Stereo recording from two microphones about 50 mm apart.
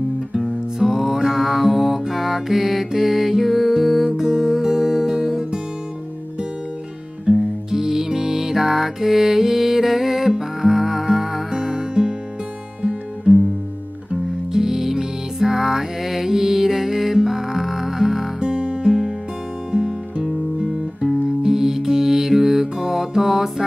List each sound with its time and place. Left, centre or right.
0.4 s music: centre
7.2 s music: centre
13.3 s music: right
14.5 s music: centre